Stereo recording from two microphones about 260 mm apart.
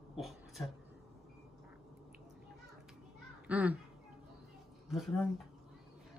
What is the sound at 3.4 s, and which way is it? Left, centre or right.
Speech, centre.